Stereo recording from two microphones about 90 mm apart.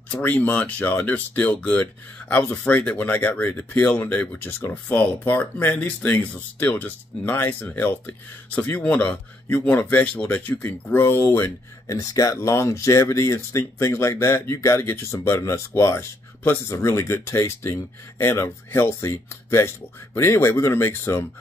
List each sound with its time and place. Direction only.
0.1 s speech: 20° left (ahead or behind)
11.4 s speech: 40° left (ahead or behind)